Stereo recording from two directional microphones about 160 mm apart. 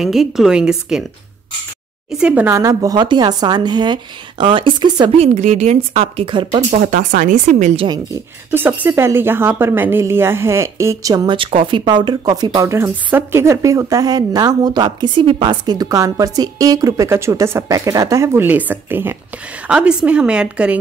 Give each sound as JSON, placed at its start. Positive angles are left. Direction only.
{"t": 0.0, "sound": "a woman's voice", "side_deg": 0}
{"t": 2.1, "sound": "speech", "side_deg": -10}
{"t": 5.1, "sound": "a woman's voice", "side_deg": -40}
{"t": 6.7, "sound": "speech", "side_deg": -55}
{"t": 7.8, "sound": "speech", "side_deg": -25}
{"t": 8.5, "sound": "speech", "side_deg": -10}